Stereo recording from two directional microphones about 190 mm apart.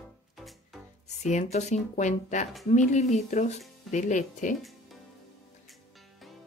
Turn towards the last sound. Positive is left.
turn(degrees=40)  # may be behind; listen again after turning